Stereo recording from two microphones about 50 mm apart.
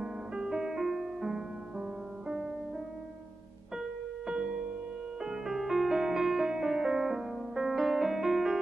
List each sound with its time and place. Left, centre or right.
0.0 s music: centre
4.3 s music: centre